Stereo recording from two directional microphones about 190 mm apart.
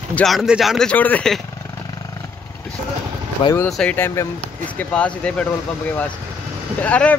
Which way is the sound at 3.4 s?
15° left (ahead or behind).